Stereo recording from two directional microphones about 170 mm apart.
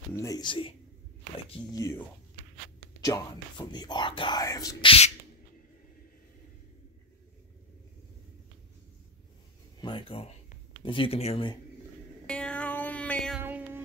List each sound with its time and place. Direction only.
0.1 s speech: 20° left (ahead or behind)
1.8 s speech: 20° left (ahead or behind)
4.8 s a sound: 35° left (ahead or behind)
9.8 s speech: 30° left (ahead or behind)
12.3 s music: 5° left (ahead or behind)
13.4 s a sound: 10° right (ahead or behind)